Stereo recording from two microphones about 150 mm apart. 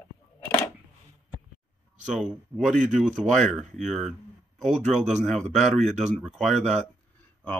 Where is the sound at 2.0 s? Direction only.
5° right (ahead or behind).